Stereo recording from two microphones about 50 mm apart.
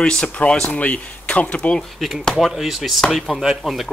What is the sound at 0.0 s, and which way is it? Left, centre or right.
Speech, left.